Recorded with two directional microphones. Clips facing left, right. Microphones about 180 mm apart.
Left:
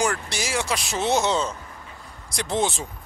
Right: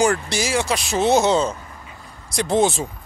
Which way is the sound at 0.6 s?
30° right (ahead or behind).